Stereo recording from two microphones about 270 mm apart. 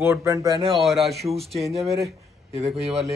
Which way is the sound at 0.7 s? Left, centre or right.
Centre.